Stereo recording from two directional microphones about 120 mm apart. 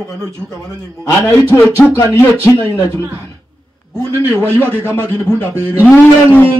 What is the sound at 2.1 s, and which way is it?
Speech, 25° left (ahead or behind).